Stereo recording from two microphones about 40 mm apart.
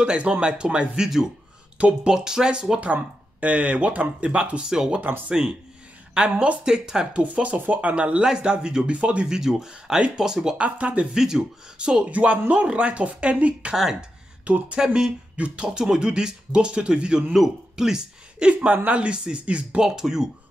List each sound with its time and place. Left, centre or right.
0.0 s speech: right
1.0 s speech: centre; by 4.6 s right
4.6 s speech: centre
7.2 s speech: right
8.2 s speech: centre
9.3 s speech: centre
10.6 s speech: right
11.1 s speech: centre
17.3 s speech: centre
18.5 s speech: right
19.8 s speech: centre